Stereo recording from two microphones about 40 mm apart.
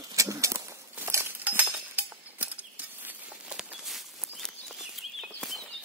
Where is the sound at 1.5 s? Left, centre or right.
Right.